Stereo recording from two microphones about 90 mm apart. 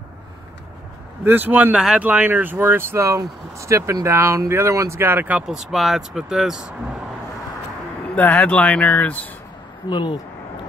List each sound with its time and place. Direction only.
1.2 s speech: 20° right (ahead or behind)
1.8 s speech: 10° right (ahead or behind)
5.5 s speech: 5° right (ahead or behind)
8.2 s speech: 15° left (ahead or behind)
9.8 s speech: 55° left (ahead or behind)